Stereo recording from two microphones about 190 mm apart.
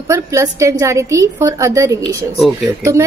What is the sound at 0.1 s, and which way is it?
Speech, 15° right (ahead or behind).